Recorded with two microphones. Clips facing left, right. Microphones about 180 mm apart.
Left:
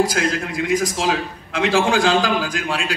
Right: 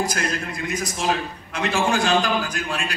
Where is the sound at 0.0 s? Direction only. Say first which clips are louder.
Left 6 dB; 90° left.